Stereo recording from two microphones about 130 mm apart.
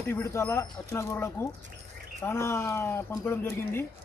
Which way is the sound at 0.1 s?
20° left (ahead or behind).